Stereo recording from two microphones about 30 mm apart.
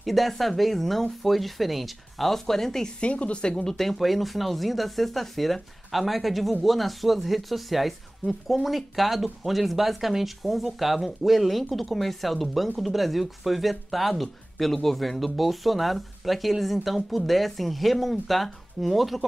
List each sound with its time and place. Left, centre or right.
0.0 s speech: centre
3.0 s speech: left
3.4 s speech: left
3.7 s speech: centre